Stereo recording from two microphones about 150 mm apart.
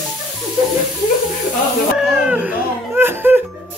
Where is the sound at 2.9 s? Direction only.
10° right (ahead or behind).